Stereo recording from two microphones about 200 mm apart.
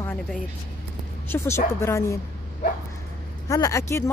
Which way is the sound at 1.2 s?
15° left (ahead or behind).